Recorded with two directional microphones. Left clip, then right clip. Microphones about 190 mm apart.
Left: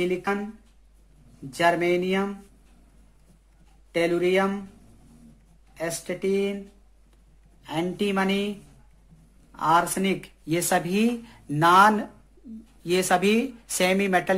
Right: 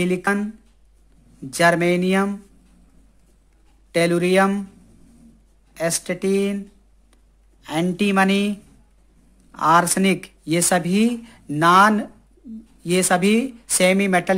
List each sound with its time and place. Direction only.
0.0 s speech: 55° right (ahead or behind)
1.5 s speech: 55° right (ahead or behind)
3.9 s speech: 55° right (ahead or behind)
5.8 s speech: 55° right (ahead or behind)
7.6 s speech: 50° right (ahead or behind); by 14.3 s 30° right (ahead or behind)